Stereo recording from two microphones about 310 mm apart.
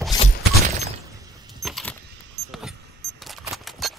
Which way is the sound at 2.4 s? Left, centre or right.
Centre.